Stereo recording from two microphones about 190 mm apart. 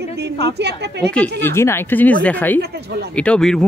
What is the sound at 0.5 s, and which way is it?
Speech, 60° right (ahead or behind).